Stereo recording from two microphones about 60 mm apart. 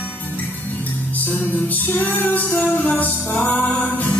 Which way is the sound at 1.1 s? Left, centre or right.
Left.